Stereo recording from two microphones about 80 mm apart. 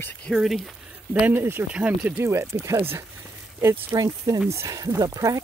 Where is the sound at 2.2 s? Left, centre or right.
Right.